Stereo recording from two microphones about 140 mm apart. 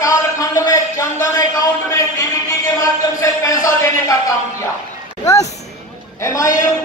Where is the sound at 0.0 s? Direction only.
25° left (ahead or behind).